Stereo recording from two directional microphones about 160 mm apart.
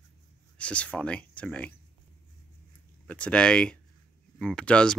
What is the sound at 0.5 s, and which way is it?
Speech, 10° left (ahead or behind).